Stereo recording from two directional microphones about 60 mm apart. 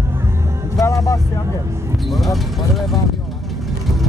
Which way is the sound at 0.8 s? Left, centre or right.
Left.